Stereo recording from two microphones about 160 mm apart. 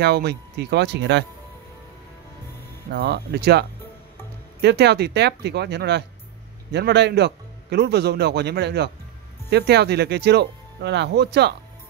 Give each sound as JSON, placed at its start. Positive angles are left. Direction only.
{"t": 0.0, "sound": "speech", "side_deg": -90}
{"t": 2.9, "sound": "speech", "side_deg": -90}